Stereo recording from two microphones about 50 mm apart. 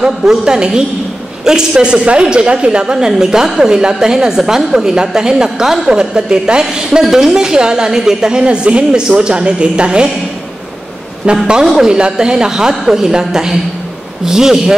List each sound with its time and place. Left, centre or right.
0.0 s a woman's voice: centre
11.3 s a woman's voice: centre
11.6 s a woman's voice: centre